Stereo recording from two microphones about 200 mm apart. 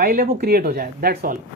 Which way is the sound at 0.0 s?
45° right (ahead or behind).